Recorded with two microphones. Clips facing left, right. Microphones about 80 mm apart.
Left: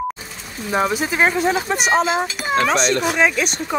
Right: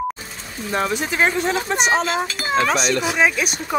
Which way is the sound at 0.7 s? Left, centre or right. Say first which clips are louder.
Left 2 dB; centre.